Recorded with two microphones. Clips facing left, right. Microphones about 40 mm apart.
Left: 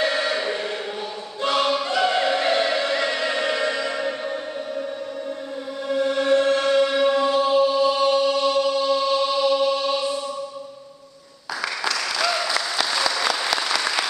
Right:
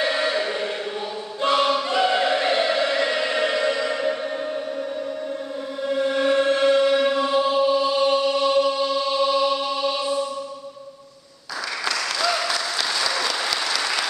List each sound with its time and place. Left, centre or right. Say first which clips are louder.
0.0 s music: even; centre
1.4 s choir: right 1 dB; centre
5.9 s chant: left 1 dB; centre
12.3 s applause: even; centre